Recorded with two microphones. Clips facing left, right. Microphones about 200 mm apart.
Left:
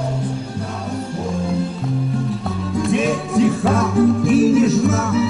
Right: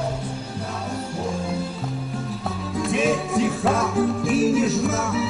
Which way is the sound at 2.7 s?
Centre (ahead or behind).